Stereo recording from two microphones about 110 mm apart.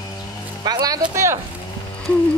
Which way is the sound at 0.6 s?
35° right (ahead or behind).